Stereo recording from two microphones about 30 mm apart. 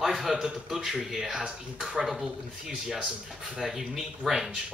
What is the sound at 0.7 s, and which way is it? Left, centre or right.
Speech, centre.